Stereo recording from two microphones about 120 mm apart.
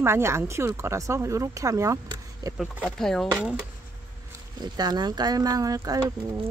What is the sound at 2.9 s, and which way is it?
Speech, 5° left (ahead or behind).